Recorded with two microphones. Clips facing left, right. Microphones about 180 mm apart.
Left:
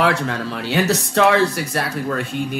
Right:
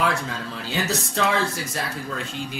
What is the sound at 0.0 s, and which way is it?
Speech, 70° left (ahead or behind).